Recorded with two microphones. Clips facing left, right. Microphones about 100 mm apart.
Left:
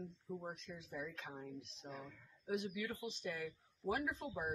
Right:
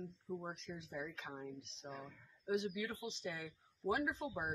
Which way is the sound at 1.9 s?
25° right (ahead or behind).